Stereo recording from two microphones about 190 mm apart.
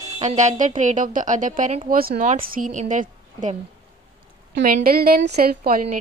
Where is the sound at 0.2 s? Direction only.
40° right (ahead or behind).